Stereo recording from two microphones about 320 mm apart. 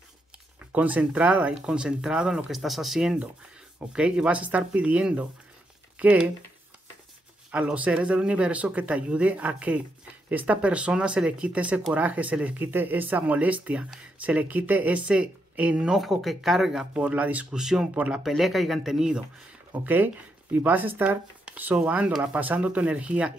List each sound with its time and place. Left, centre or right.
0.7 s speech: centre
7.5 s speech: centre